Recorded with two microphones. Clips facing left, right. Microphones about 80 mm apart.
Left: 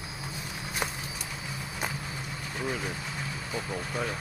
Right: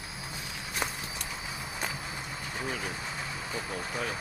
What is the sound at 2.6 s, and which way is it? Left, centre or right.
Speech, centre.